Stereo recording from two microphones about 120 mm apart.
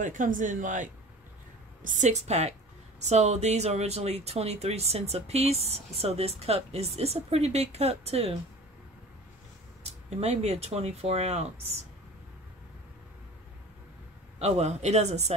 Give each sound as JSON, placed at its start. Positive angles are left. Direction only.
{"t": 0.0, "sound": "speech", "side_deg": -90}
{"t": 10.0, "sound": "speech", "side_deg": -65}
{"t": 14.4, "sound": "speech", "side_deg": -65}